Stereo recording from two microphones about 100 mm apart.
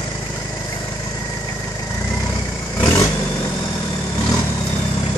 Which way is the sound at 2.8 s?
35° left (ahead or behind).